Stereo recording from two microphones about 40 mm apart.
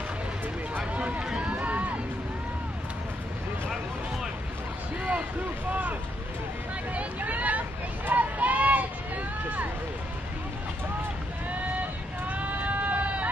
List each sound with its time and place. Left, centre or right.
0.7 s a sound: right
1.4 s run: right
5.7 s boat: right
6.9 s hubbub: right
8.1 s a sound: right
12.3 s sheep: right